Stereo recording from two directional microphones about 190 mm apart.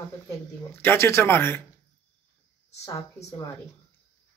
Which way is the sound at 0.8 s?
10° left (ahead or behind).